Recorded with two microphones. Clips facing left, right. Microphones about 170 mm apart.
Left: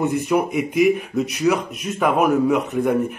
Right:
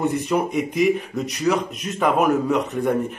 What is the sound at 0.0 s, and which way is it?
A man's voice, 5° left (ahead or behind).